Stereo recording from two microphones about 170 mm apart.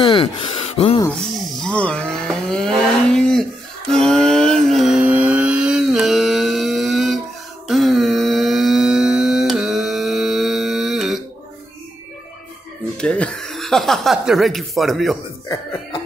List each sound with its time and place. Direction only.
0.0 s gasp: 35° left (ahead or behind)
1.2 s a sound: 5° left (ahead or behind)
12.9 s chuckle: 5° left (ahead or behind)
15.4 s music: 20° left (ahead or behind)